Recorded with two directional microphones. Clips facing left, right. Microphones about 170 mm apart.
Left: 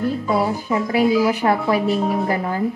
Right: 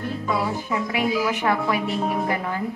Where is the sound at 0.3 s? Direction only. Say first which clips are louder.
Left 3 dB; 35° left (ahead or behind).